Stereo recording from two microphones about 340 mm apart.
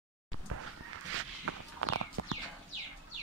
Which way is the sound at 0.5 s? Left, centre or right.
Right.